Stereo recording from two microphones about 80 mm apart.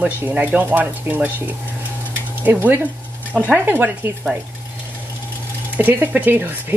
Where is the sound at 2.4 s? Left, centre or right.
Right.